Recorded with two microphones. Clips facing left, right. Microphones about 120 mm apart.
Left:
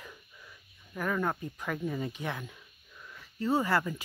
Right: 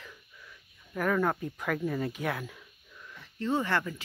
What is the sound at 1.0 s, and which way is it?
Speech, centre (ahead or behind).